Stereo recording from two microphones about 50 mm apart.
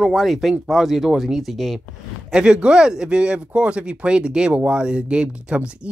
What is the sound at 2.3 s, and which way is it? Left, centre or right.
Speech, centre.